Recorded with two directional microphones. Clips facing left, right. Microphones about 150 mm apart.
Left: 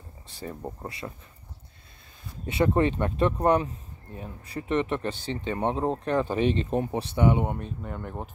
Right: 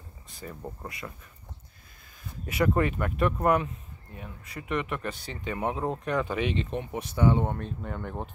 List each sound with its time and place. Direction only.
0.3 s speech: 35° left (ahead or behind)
2.4 s speech: 25° left (ahead or behind); by 8.3 s 5° left (ahead or behind)